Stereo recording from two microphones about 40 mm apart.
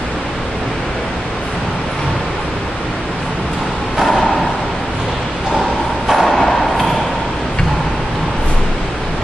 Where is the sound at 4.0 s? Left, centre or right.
Centre.